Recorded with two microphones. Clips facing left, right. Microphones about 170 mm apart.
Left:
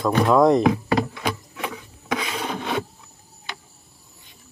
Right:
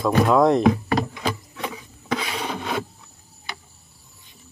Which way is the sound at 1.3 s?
5° left (ahead or behind).